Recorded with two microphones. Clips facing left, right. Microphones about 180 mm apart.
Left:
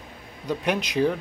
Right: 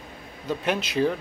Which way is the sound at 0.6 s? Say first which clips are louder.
Left 1 dB; 15° left (ahead or behind).